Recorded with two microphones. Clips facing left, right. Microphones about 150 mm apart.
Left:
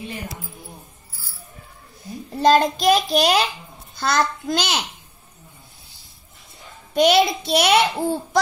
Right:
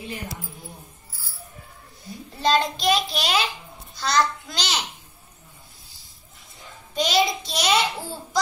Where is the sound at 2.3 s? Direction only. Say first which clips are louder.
Left 6 dB; 45° left (ahead or behind).